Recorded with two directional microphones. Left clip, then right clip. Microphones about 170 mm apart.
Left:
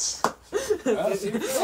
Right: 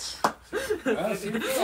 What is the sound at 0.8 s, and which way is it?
Speech, 80° left.